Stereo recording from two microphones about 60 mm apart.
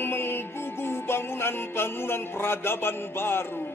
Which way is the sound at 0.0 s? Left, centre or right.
Left.